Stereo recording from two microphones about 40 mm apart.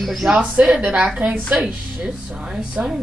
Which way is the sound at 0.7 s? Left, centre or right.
Right.